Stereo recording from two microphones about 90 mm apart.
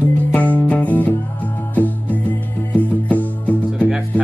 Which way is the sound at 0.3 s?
15° left (ahead or behind).